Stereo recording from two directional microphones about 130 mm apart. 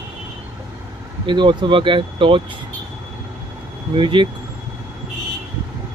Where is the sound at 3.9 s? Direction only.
40° right (ahead or behind).